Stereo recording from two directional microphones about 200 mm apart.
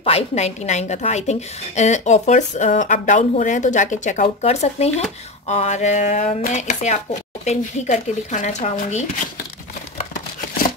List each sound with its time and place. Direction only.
0.0 s a woman's voice: 30° left (ahead or behind)